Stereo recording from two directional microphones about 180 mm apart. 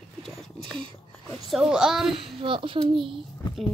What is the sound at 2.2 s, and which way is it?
Speech, 30° right (ahead or behind).